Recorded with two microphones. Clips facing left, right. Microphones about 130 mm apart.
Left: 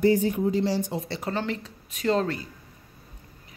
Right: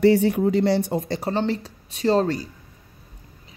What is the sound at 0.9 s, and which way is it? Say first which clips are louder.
Speech: right 5 dB; 40° right (ahead or behind).